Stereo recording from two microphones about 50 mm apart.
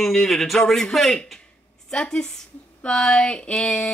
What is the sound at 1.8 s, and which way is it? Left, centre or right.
Speech, centre.